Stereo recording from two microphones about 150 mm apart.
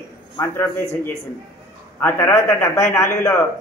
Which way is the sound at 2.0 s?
15° left (ahead or behind).